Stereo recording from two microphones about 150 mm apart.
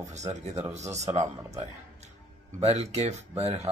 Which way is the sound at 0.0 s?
50° right (ahead or behind).